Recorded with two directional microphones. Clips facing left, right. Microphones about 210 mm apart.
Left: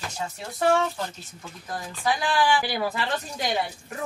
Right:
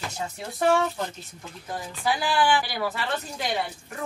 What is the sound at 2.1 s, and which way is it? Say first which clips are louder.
Speech: even; 5° right (ahead or behind).